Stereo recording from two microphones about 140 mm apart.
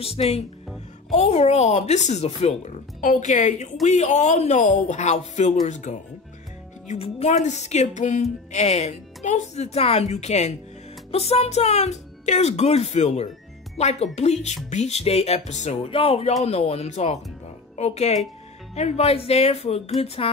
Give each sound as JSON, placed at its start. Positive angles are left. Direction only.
{"t": 0.0, "sound": "speech", "side_deg": 45}